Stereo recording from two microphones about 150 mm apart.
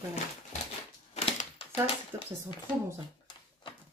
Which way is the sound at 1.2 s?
45° left (ahead or behind).